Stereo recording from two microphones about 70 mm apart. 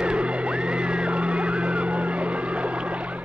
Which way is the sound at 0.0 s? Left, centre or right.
Centre.